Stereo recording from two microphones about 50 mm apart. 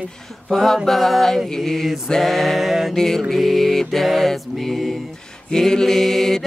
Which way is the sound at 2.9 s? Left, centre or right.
Centre.